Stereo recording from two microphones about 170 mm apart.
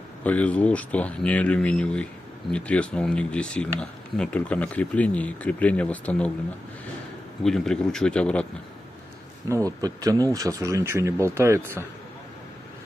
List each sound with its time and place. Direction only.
0.2 s speech: 10° left (ahead or behind)
7.4 s a man's voice: 5° left (ahead or behind)
9.7 s speech: 20° right (ahead or behind)